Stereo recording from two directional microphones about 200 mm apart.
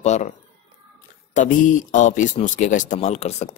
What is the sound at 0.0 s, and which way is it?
Speech, 35° left (ahead or behind).